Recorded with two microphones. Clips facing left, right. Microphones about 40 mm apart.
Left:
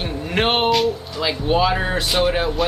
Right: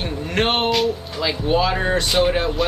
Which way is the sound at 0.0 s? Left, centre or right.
Centre.